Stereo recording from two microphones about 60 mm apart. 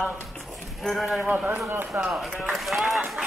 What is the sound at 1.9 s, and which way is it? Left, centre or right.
Speech, centre.